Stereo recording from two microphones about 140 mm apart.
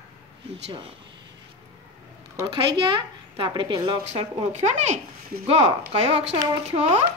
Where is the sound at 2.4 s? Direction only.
35° right (ahead or behind).